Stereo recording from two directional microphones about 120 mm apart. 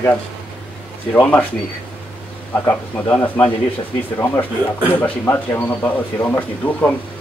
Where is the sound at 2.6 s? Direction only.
20° left (ahead or behind).